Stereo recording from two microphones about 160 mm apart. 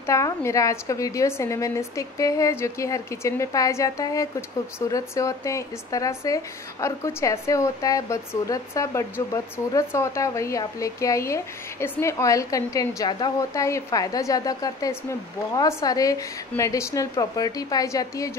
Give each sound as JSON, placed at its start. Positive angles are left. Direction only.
{"t": 0.0, "sound": "speech", "side_deg": 15}